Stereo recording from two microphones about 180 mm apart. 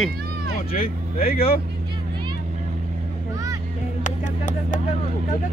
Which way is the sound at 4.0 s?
45° left (ahead or behind).